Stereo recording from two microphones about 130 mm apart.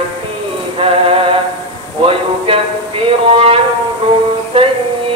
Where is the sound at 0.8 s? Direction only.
45° right (ahead or behind).